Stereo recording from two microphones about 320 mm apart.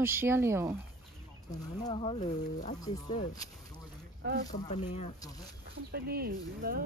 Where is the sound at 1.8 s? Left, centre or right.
Centre.